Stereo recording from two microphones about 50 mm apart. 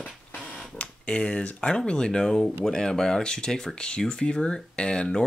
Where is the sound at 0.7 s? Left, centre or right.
Centre.